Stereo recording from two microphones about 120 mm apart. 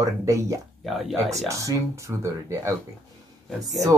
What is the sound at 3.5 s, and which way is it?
Speech, centre (ahead or behind).